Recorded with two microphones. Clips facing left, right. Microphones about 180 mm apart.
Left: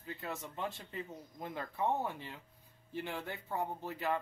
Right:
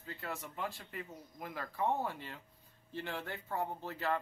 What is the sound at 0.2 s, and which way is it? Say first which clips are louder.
Speech: even; 20° left (ahead or behind).